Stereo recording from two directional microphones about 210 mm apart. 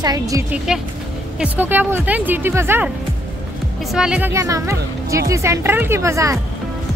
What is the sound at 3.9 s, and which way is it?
Speech, 5° right (ahead or behind).